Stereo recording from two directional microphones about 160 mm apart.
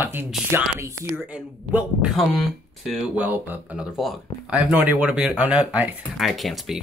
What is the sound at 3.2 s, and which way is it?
Speech, 10° right (ahead or behind).